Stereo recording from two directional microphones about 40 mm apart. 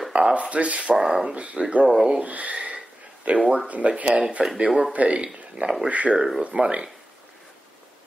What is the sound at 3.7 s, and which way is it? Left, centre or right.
Speech, right.